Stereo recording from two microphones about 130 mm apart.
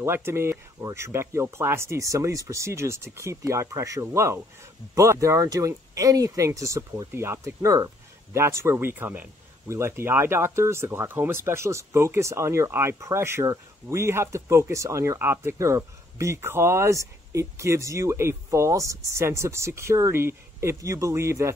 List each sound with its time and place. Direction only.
0.0 s speech: 20° right (ahead or behind)